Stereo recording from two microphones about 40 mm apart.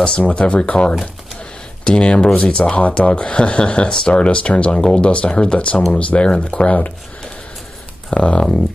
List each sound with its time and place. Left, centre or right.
0.4 s speech: left
4.7 s speech: centre
5.0 s speech: left
8.1 s speech: left